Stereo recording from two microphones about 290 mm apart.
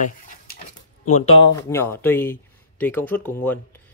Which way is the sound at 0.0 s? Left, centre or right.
Left.